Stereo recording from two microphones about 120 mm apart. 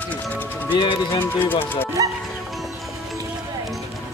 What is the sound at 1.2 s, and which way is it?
Speech, 15° left (ahead or behind).